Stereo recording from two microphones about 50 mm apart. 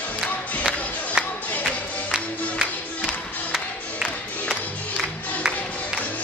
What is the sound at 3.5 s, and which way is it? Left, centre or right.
Music, centre.